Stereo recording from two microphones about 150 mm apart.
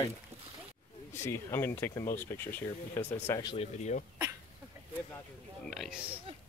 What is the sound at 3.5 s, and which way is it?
Speech, 50° left (ahead or behind).